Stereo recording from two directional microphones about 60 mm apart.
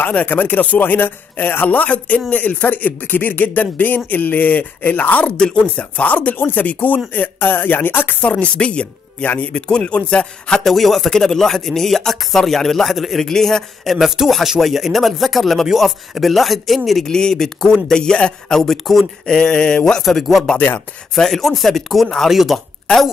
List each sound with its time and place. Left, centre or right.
0.0 s speech: left
8.2 s speech: left
10.6 s speech: centre
18.6 s speech: centre
19.2 s speech: centre